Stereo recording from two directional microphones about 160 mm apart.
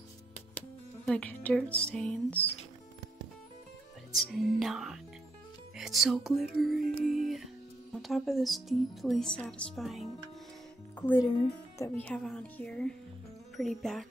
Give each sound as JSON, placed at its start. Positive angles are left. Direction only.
{"t": 0.6, "sound": "speech", "side_deg": 5}
{"t": 4.2, "sound": "speech", "side_deg": 0}
{"t": 7.2, "sound": "music", "side_deg": 0}
{"t": 8.0, "sound": "speech", "side_deg": 0}
{"t": 11.0, "sound": "speech", "side_deg": 10}
{"t": 11.2, "sound": "speech", "side_deg": 30}
{"t": 11.8, "sound": "speech", "side_deg": 10}